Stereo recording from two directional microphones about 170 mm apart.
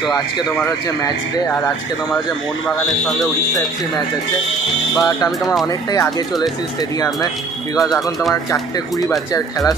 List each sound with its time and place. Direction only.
4.9 s speech: 20° left (ahead or behind)
8.5 s speech: 20° left (ahead or behind)